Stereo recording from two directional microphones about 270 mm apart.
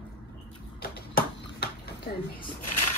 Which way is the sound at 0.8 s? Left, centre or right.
Left.